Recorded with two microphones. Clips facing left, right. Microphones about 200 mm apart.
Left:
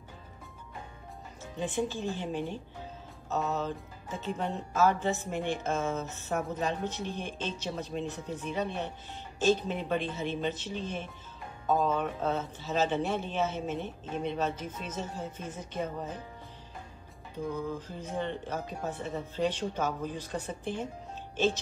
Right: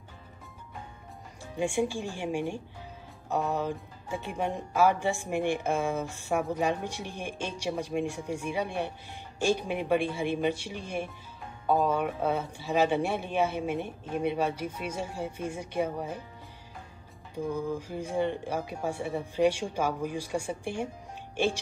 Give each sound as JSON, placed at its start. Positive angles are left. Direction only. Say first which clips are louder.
{"t": 1.4, "sound": "speech", "louder": "right 4 dB", "side_deg": -10}
{"t": 17.5, "sound": "speech", "louder": "right 3 dB", "side_deg": -10}